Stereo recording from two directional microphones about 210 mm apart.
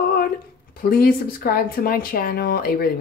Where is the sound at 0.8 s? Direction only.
45° left (ahead or behind).